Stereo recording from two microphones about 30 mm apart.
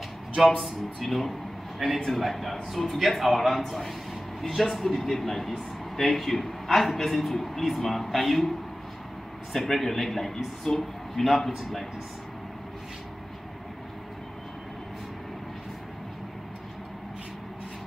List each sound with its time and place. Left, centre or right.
0.4 s a man's voice: centre
9.5 s a man's voice: centre
10.3 s a woman's voice: centre
10.8 s a man's voice: centre